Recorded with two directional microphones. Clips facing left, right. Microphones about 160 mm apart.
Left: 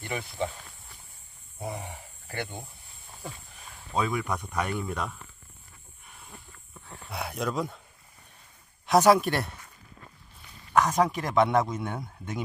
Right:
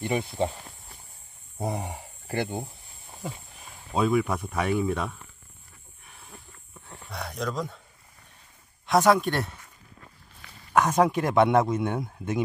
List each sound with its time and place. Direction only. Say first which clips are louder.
0.0 s speech: right 5 dB; 25° right (ahead or behind)
1.6 s speech: right 5 dB; 35° right (ahead or behind)
3.9 s a man's voice: right 5 dB; 5° right (ahead or behind)
7.1 s speech: left 1 dB; 5° left (ahead or behind)
8.8 s a man's voice: left 1 dB; centre (ahead or behind)
10.7 s a man's voice: right 2 dB; 5° right (ahead or behind)